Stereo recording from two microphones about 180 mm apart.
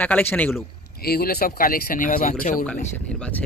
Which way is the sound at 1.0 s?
60° left (ahead or behind).